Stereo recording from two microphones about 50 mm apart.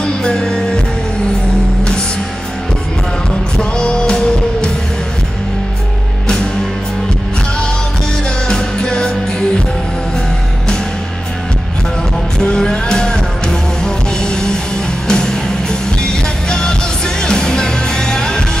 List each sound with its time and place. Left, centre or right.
0.0 s music: centre
3.5 s music: centre
8.5 s music: centre
12.4 s music: centre